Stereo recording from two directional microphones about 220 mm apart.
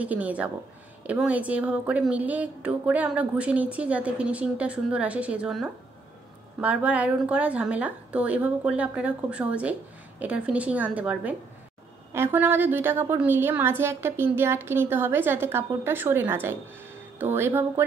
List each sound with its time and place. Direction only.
0.0 s a woman's voice: 5° right (ahead or behind)